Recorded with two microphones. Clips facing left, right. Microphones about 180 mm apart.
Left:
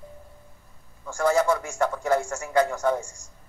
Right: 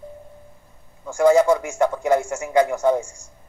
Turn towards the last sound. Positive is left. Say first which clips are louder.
# right 5 dB
turn(degrees=-20)  # may be behind; listen again after turning